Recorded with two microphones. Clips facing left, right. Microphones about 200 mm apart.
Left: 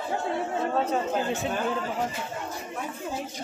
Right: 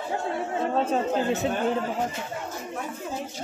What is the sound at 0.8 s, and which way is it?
Chatter, 40° right (ahead or behind).